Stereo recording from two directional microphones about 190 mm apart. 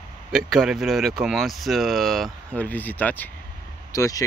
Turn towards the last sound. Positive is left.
turn(degrees=20)  # may be behind; listen again after turning